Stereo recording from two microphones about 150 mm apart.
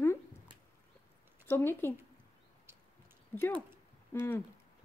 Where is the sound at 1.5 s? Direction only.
15° left (ahead or behind).